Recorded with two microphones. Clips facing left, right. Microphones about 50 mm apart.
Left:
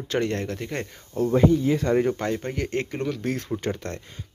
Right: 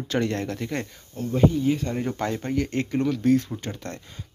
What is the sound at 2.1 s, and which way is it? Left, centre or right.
Speech, centre.